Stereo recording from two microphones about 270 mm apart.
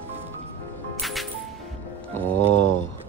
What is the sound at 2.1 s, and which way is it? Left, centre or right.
Mantra, centre.